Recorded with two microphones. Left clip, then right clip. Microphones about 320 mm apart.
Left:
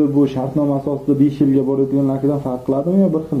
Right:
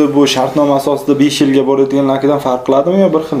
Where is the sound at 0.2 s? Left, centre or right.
Centre.